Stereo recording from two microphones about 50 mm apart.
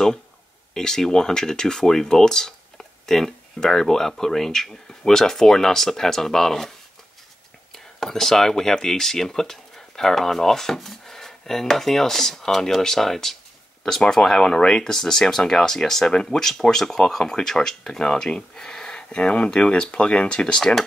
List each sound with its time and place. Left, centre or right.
0.7 s speech: centre
7.7 s speech: centre